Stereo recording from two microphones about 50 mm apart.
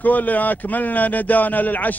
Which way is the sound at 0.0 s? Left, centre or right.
Left.